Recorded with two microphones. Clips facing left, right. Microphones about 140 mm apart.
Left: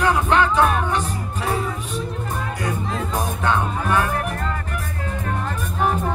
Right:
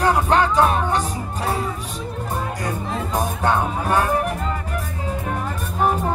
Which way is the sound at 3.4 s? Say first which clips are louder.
Right 1 dB; 35° right (ahead or behind).